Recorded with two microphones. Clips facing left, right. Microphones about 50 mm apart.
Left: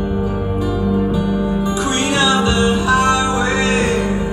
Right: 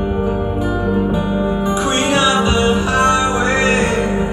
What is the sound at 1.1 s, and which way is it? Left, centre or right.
Music, right.